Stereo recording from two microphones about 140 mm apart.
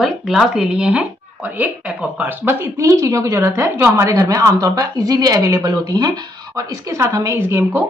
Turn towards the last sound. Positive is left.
turn(degrees=-20)  # may be behind; listen again after turning